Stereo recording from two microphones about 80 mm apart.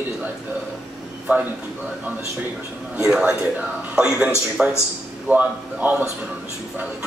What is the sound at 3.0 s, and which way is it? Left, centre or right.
A man's voice, centre.